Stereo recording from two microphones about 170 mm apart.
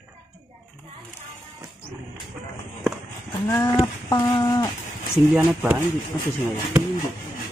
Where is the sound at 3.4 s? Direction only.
20° left (ahead or behind).